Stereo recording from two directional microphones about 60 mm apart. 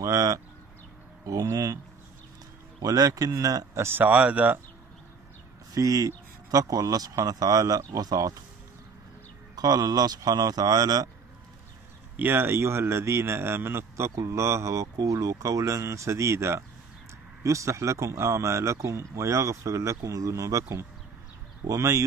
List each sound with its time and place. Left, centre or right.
0.0 s speech: right
2.8 s speech: right
4.0 s speech: right
5.8 s speech: right
9.6 s speech: right
12.2 s a man's voice: right
17.4 s speech: right
21.6 s speech: right